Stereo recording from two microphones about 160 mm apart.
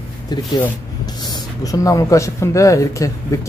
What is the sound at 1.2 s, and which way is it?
Speech, 25° left (ahead or behind).